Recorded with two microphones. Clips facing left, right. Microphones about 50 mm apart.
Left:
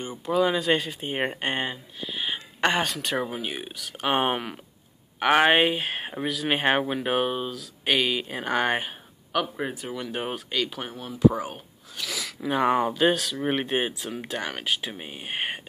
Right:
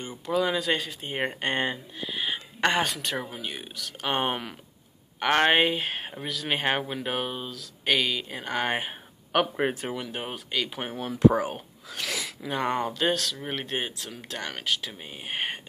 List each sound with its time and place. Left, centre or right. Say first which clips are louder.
0.0 s speech: left 3 dB; centre
3.2 s speech: left 5 dB; centre
9.3 s speech: right 3 dB; right
10.0 s speech: left 4 dB; centre
10.8 s speech: right 2 dB; right
11.1 s speech: right 1 dB; right
11.9 s speech: right 1 dB; right
12.4 s speech: left 6 dB; centre
15.1 s speech: even; centre